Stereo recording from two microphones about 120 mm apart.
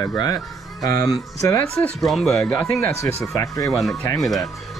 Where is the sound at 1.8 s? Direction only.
Centre (ahead or behind).